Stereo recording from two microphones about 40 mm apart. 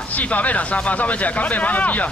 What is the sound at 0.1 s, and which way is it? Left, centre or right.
Speech, left.